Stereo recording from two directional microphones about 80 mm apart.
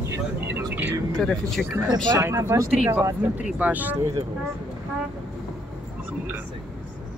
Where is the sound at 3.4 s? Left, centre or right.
Centre.